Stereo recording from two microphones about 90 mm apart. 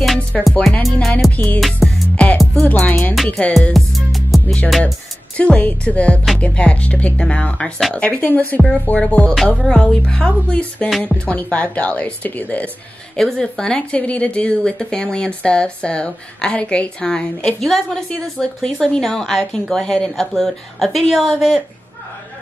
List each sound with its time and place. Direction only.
0.3 s speech: 5° left (ahead or behind)
1.6 s music: centre (ahead or behind)
2.2 s music: 10° left (ahead or behind)
3.3 s speech: 15° left (ahead or behind)
3.7 s music: centre (ahead or behind)
4.6 s a woman's voice: centre (ahead or behind)
5.4 s speech: 15° left (ahead or behind)
13.2 s speech: 5° left (ahead or behind)
17.6 s a woman's voice: centre (ahead or behind)